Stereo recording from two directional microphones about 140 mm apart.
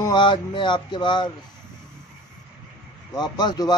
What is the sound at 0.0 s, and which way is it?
Speech, 35° left (ahead or behind).